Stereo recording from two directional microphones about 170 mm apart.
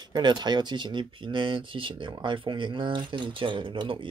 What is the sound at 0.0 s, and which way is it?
Speech, 25° right (ahead or behind).